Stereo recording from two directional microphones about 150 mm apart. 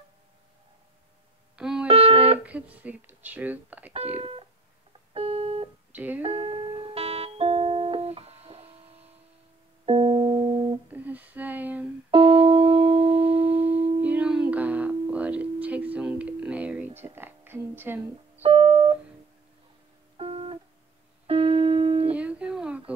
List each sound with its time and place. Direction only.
1.6 s music: 5° right (ahead or behind)
1.9 s music: 40° right (ahead or behind)
2.3 s speech: 10° right (ahead or behind)
3.9 s speech: 45° right (ahead or behind)
5.1 s music: 40° right (ahead or behind)
5.9 s speech: 10° right (ahead or behind)
6.2 s music: 40° right (ahead or behind)
9.8 s music: 35° right (ahead or behind)
10.9 s a sound: 10° right (ahead or behind)
12.1 s music: 40° right (ahead or behind)
14.0 s a sound: 10° right (ahead or behind)
18.4 s music: 35° right (ahead or behind)
20.2 s music: 40° right (ahead or behind)
22.1 s a sound: 10° right (ahead or behind)